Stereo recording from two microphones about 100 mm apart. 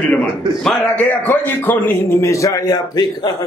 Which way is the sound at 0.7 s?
10° left (ahead or behind).